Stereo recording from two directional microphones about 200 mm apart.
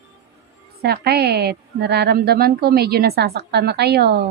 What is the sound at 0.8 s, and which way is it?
A woman's voice, 50° right (ahead or behind).